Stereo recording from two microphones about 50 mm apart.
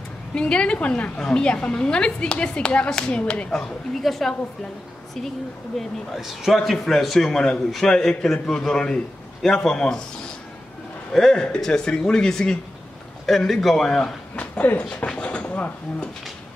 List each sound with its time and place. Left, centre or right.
0.3 s a woman's voice: left
3.5 s a man's voice: centre
5.8 s a man's voice: centre
11.1 s a man's voice: centre
13.5 s a man's voice: centre
14.3 s a sound: left